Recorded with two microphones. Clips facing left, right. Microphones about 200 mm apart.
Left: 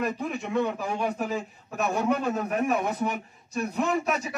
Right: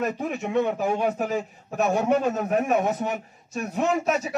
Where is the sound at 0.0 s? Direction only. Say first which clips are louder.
Right 2 dB; 45° right (ahead or behind).